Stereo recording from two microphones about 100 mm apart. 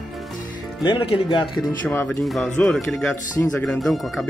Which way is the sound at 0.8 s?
65° left (ahead or behind).